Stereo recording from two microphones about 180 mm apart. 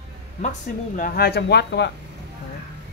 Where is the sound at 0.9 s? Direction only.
55° left (ahead or behind); by 1.9 s 70° left (ahead or behind).